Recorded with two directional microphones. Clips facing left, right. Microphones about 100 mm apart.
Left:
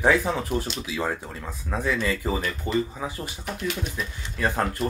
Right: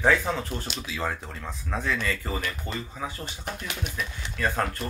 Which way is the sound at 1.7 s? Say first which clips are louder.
Left 3 dB; 10° left (ahead or behind).